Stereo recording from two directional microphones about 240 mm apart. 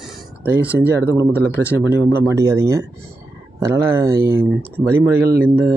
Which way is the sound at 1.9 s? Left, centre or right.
Centre.